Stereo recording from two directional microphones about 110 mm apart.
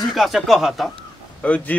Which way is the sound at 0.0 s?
Centre (ahead or behind).